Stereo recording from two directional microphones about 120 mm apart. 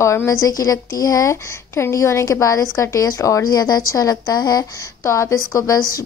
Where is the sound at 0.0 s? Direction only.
25° left (ahead or behind).